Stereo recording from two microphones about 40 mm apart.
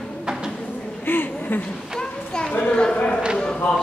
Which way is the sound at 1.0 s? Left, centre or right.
Left.